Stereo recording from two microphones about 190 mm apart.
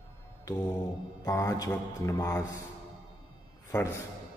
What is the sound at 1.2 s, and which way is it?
A man's voice, 15° left (ahead or behind).